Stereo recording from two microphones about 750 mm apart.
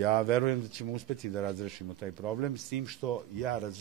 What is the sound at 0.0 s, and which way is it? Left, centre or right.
Speech, right.